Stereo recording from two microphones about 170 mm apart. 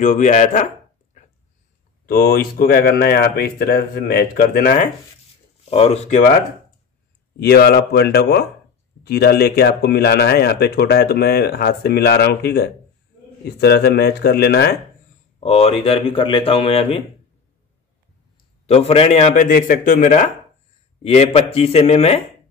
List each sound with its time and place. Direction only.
0.0 s a man's voice: 45° left (ahead or behind)
2.0 s speech: 65° left (ahead or behind)
5.7 s speech: 35° left (ahead or behind)
7.3 s speech: 65° left (ahead or behind)
15.4 s speech: 35° left (ahead or behind)
18.7 s a man's voice: 35° left (ahead or behind)
21.0 s speech: 35° left (ahead or behind)